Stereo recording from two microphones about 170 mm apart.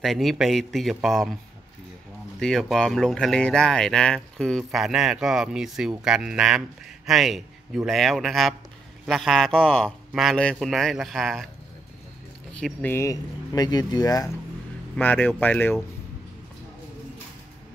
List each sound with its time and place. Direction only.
0.0 s speech: centre (ahead or behind)
2.4 s speech: 5° left (ahead or behind)
12.5 s speech: 10° left (ahead or behind)
15.0 s speech: 10° left (ahead or behind)